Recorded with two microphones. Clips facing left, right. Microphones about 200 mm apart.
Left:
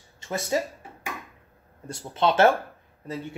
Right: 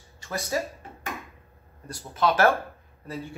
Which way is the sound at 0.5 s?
20° left (ahead or behind).